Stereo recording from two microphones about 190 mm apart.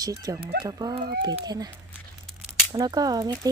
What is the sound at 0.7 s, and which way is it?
Speech, 20° right (ahead or behind).